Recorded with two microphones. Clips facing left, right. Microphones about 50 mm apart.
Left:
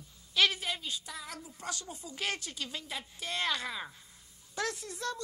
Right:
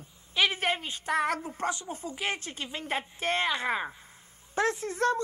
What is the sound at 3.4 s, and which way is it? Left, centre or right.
Speech, right.